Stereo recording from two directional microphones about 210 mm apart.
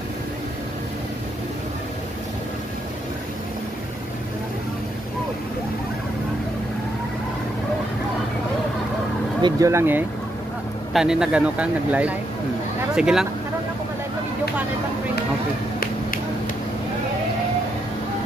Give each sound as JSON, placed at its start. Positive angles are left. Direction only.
{"t": 9.4, "sound": "speech", "side_deg": -15}